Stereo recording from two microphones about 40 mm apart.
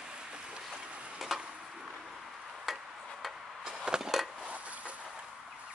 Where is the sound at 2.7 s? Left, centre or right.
Centre.